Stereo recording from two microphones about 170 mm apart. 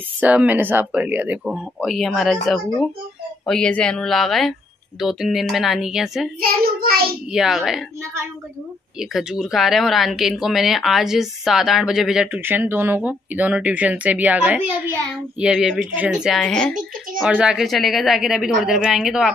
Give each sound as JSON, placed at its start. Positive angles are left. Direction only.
{"t": 0.2, "sound": "speech", "side_deg": -10}
{"t": 3.4, "sound": "speech", "side_deg": 5}
{"t": 6.4, "sound": "child singing", "side_deg": -60}
{"t": 7.3, "sound": "speech", "side_deg": 0}
{"t": 8.0, "sound": "speech", "side_deg": -15}
{"t": 9.1, "sound": "speech", "side_deg": 0}